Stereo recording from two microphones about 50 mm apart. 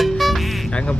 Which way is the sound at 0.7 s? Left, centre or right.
Left.